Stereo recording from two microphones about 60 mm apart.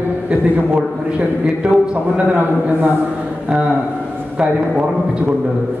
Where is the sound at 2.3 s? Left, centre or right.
Right.